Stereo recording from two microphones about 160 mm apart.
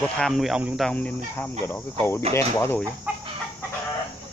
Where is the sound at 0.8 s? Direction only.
10° left (ahead or behind).